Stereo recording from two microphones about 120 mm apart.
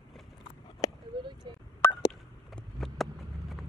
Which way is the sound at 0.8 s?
30° left (ahead or behind).